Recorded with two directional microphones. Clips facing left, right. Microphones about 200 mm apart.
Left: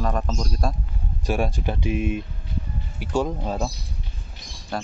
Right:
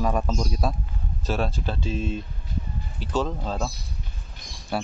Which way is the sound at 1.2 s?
15° left (ahead or behind).